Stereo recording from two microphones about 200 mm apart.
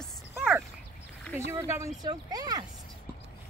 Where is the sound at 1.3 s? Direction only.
15° right (ahead or behind).